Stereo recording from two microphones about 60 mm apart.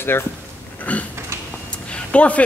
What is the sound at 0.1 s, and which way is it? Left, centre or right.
Speech, left.